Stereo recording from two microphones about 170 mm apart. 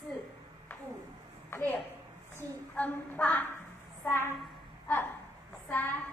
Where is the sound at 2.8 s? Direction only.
10° left (ahead or behind).